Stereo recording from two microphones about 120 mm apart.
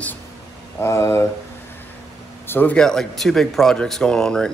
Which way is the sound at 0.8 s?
25° left (ahead or behind).